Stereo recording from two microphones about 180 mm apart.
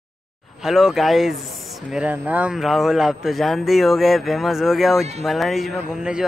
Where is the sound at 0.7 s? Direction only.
Centre (ahead or behind).